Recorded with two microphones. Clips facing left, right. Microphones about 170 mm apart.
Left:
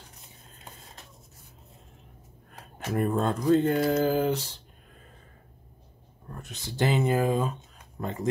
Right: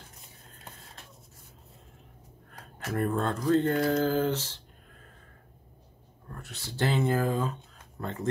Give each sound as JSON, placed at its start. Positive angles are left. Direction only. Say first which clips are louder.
{"t": 2.5, "sound": "speech", "louder": "left 3 dB", "side_deg": 20}
{"t": 6.2, "sound": "speech", "louder": "left 3 dB", "side_deg": 20}